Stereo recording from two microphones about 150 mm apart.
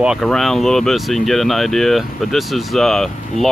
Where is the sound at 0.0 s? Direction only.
Centre (ahead or behind).